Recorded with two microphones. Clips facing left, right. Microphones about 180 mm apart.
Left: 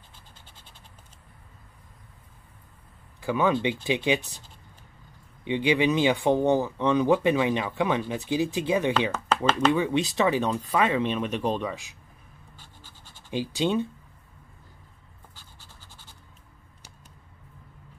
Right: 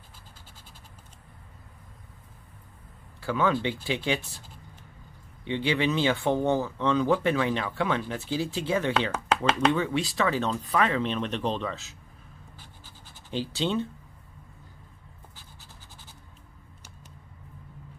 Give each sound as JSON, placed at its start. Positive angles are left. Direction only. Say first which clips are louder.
{"t": 3.2, "sound": "speech", "louder": "left 2 dB", "side_deg": 15}
{"t": 5.4, "sound": "speech", "louder": "left 3 dB", "side_deg": 15}
{"t": 13.3, "sound": "speech", "louder": "left 3 dB", "side_deg": 15}